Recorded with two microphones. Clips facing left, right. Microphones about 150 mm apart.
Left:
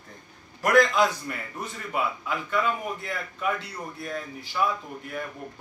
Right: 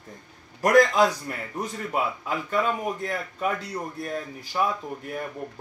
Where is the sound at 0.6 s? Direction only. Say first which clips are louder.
Right 2 dB; 40° right (ahead or behind).